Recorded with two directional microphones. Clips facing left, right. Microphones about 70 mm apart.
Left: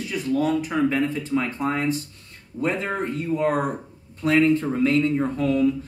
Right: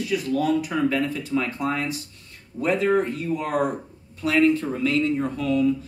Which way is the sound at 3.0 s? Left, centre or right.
Left.